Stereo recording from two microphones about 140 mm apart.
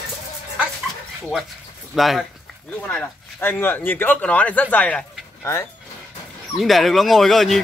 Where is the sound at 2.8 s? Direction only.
10° left (ahead or behind).